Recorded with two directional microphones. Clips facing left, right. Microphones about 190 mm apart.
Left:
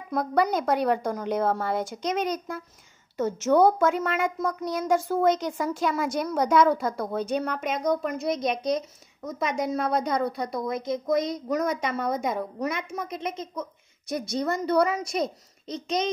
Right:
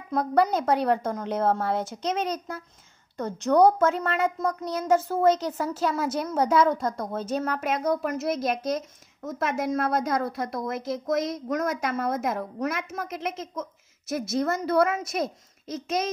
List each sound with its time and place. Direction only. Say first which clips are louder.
0.8 s a woman's voice: even; centre (ahead or behind)
2.0 s speech: left 1 dB; 30° right (ahead or behind)
3.2 s a woman's voice: even; centre (ahead or behind)